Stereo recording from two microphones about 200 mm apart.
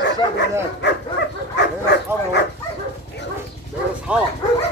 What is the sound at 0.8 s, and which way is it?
Dog, 60° left (ahead or behind).